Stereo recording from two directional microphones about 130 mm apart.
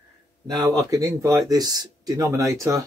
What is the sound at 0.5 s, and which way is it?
Speech, 25° right (ahead or behind).